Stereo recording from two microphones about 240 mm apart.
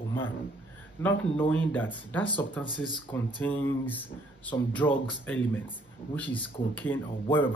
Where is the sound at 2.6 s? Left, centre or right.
Centre.